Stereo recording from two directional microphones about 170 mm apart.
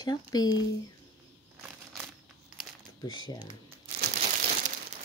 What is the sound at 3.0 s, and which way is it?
Speech, 25° left (ahead or behind).